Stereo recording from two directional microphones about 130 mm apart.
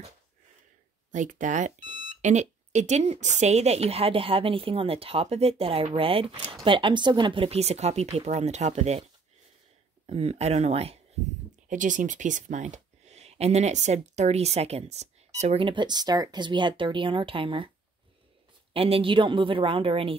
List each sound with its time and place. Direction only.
1.1 s speech: 75° right (ahead or behind); by 9.0 s 55° right (ahead or behind)
10.0 s speech: 50° right (ahead or behind)
11.7 s speech: 75° right (ahead or behind); by 17.6 s 40° right (ahead or behind)
18.7 s speech: 45° right (ahead or behind)